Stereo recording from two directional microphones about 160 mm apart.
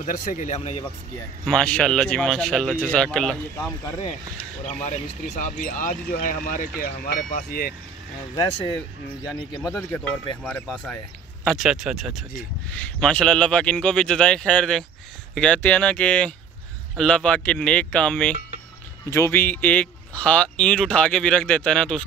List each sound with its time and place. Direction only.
0.0 s speech: 50° left (ahead or behind)
1.4 s speech: 5° left (ahead or behind)
4.6 s speech: 45° left (ahead or behind); by 7.7 s 65° left (ahead or behind)
9.6 s speech: 5° left (ahead or behind)
11.4 s speech: centre (ahead or behind)
12.7 s speech: 10° left (ahead or behind)
19.0 s speech: 15° left (ahead or behind)